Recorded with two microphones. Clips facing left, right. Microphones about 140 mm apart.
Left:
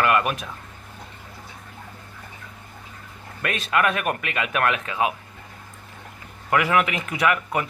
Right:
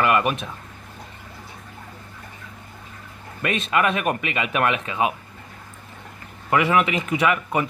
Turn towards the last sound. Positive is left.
turn(degrees=-5)  # may be behind; listen again after turning